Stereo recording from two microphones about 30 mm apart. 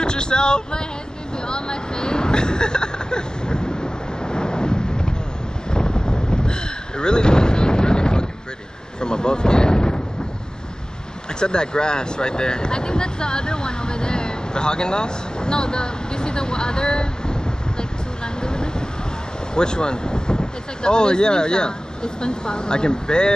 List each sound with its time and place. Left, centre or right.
0.0 s a sound: left
1.5 s vehicle: left
5.7 s a sound: left
9.0 s speech: left
11.3 s vehicle: left
19.5 s speech: left